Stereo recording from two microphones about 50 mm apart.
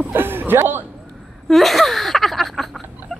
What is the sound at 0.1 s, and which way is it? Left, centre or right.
Chuckle, right.